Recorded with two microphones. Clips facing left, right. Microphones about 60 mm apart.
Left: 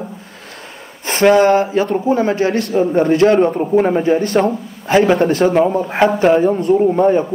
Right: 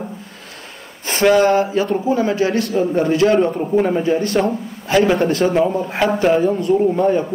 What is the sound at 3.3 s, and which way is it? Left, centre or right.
A man's voice, left.